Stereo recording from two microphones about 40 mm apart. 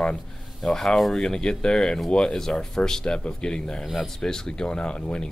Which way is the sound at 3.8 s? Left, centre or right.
Centre.